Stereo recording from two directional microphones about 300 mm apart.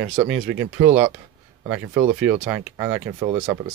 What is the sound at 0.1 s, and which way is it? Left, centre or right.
Speech, centre.